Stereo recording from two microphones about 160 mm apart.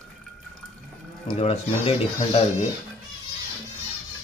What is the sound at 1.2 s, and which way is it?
Speech, 35° left (ahead or behind).